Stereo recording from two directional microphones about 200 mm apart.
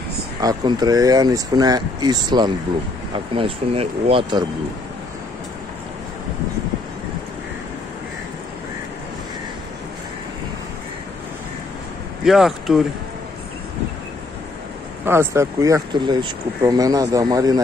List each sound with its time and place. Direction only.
0.4 s speech: 20° right (ahead or behind)
12.3 s speech: centre (ahead or behind)
15.0 s speech: 15° right (ahead or behind)